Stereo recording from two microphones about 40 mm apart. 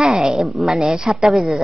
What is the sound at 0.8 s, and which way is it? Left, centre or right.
Speech, centre.